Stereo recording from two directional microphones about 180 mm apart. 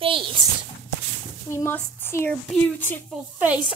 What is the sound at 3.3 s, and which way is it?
Speech, 10° right (ahead or behind).